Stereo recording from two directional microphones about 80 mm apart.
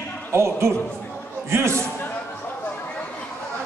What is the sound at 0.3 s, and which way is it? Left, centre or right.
Speech, right.